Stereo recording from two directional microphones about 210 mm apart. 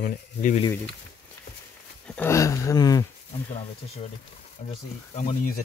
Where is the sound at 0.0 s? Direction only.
40° left (ahead or behind).